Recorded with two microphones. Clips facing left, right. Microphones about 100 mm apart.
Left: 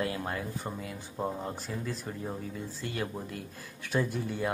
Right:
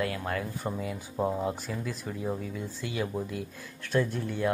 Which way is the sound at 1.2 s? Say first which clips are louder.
Right 5 dB; 5° right (ahead or behind).